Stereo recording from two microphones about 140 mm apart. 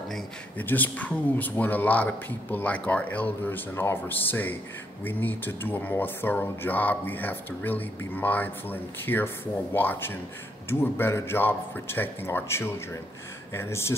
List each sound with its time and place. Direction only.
0.1 s speech: 10° left (ahead or behind)